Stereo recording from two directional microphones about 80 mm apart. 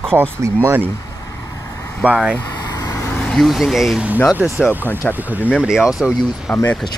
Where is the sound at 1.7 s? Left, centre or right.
Left.